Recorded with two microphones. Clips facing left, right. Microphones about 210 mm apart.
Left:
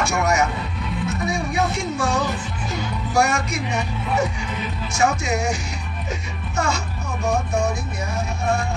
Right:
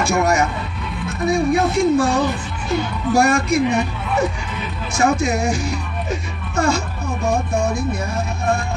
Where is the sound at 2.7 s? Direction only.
55° right (ahead or behind).